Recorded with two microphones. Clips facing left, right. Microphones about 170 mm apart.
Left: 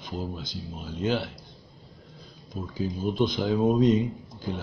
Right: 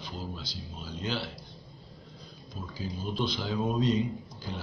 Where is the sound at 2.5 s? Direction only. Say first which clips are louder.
Left 7 dB; 50° left (ahead or behind).